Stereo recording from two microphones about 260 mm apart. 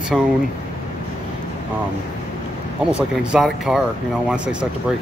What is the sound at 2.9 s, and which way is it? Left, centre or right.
Speech, centre.